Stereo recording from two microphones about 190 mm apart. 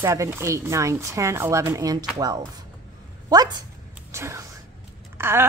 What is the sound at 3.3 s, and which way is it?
Speech, 20° right (ahead or behind).